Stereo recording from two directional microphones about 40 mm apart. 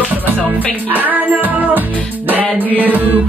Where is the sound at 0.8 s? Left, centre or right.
Right.